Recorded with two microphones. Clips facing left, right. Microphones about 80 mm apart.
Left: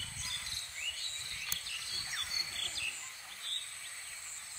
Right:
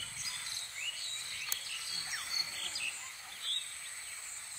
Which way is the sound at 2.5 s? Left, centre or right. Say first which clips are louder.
Left 1 dB; centre.